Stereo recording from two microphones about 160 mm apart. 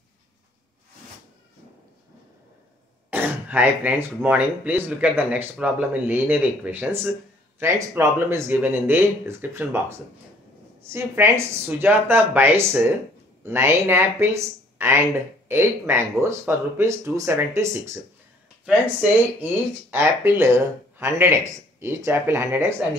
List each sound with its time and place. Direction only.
3.1 s speech: 10° right (ahead or behind)